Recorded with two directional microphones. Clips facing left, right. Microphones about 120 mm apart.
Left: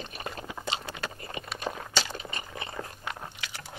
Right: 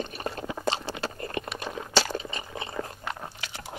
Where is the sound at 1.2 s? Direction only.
50° right (ahead or behind).